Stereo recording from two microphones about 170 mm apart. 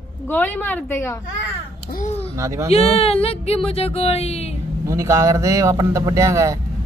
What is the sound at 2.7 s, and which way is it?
Speech, 35° left (ahead or behind).